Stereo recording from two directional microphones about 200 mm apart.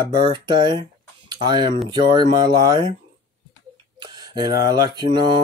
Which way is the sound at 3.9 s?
20° right (ahead or behind).